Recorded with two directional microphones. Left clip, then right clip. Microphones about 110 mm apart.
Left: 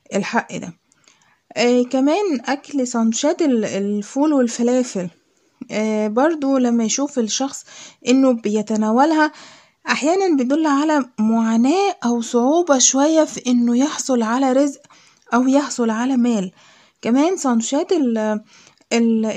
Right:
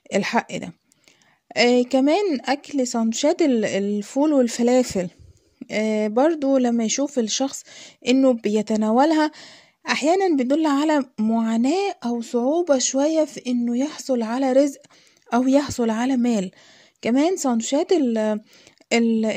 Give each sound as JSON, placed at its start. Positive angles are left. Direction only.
{"t": 0.1, "sound": "a woman's voice", "side_deg": -35}
{"t": 5.7, "sound": "a woman's voice", "side_deg": -30}
{"t": 15.2, "sound": "a woman's voice", "side_deg": -30}